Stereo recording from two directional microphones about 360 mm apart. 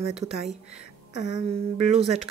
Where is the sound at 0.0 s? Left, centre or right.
Centre.